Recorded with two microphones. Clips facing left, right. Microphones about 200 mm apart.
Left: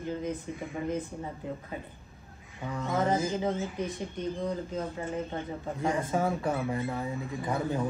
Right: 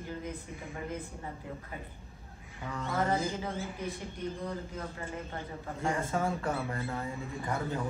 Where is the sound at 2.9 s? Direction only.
20° left (ahead or behind).